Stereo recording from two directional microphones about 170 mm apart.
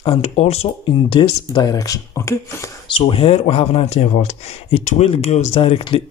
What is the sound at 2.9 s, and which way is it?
Speech, 30° left (ahead or behind).